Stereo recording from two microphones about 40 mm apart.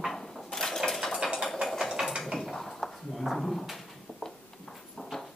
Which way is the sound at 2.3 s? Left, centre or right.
Centre.